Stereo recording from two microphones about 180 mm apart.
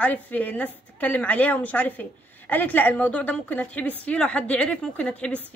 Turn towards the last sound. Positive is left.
turn(degrees=5)  # may be behind; listen again after turning